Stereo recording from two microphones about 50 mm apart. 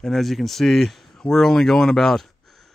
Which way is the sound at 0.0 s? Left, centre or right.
Centre.